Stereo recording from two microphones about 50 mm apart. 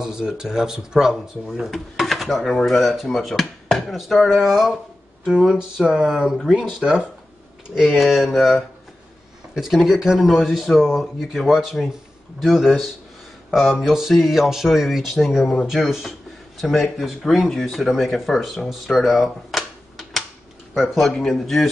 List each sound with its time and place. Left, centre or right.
0.0 s speech: centre
1.7 s speech: centre
8.0 s speech: centre
9.6 s speech: centre